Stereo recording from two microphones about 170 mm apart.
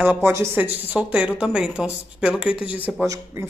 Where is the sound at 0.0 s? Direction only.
15° right (ahead or behind).